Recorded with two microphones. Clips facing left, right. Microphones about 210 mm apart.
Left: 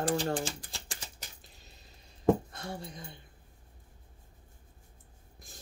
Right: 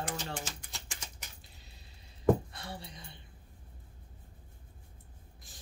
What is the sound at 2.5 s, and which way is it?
Speech, 45° left (ahead or behind).